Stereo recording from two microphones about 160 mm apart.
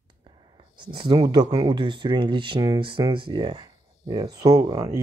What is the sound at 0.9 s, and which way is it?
Speech, 25° right (ahead or behind).